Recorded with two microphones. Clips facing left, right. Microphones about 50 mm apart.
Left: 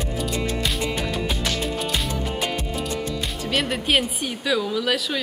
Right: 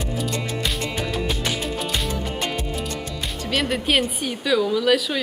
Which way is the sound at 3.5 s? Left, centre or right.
Centre.